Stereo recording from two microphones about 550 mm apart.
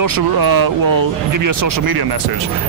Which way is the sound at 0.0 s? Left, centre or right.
Right.